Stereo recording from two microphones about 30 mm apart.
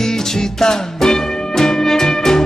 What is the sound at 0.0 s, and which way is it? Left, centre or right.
Music, centre.